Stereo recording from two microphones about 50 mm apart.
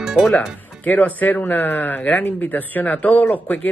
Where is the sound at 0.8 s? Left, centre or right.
Left.